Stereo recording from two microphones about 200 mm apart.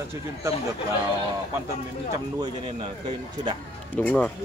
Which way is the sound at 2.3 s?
30° right (ahead or behind).